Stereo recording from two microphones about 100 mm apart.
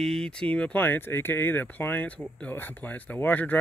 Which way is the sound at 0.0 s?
5° left (ahead or behind).